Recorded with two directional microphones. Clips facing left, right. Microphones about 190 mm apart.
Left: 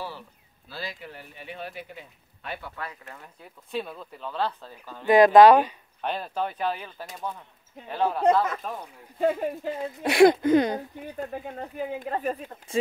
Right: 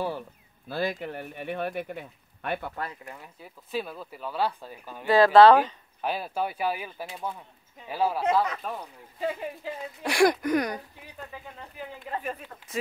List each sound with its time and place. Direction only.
0.7 s speech: 55° right (ahead or behind)
3.1 s speech: 5° right (ahead or behind)
5.0 s speech: 20° left (ahead or behind)
5.9 s speech: 5° right (ahead or behind)
9.2 s speech: 50° left (ahead or behind)
9.8 s speech: 25° left (ahead or behind)
11.0 s speech: 50° left (ahead or behind)